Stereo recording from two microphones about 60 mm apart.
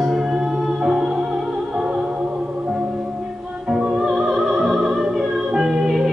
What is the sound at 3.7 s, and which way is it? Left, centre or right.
Music, centre.